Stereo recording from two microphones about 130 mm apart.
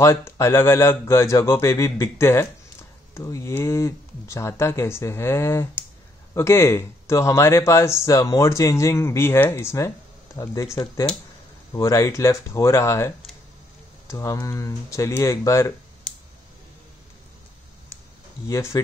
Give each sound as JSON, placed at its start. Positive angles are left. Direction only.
{"t": 0.0, "sound": "speech", "side_deg": 20}
{"t": 18.5, "sound": "speech", "side_deg": 20}